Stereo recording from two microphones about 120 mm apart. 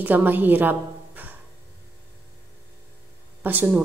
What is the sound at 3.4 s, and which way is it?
Speech, 15° right (ahead or behind).